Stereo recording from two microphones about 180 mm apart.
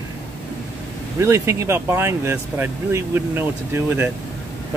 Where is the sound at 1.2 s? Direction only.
15° right (ahead or behind).